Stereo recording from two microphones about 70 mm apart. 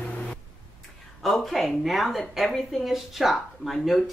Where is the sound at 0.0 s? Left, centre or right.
Centre.